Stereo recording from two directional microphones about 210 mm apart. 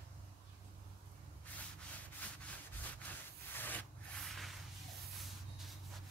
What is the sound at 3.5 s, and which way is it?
Rub, 10° left (ahead or behind).